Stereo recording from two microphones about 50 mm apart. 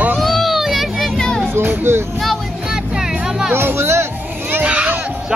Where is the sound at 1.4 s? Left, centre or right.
Right.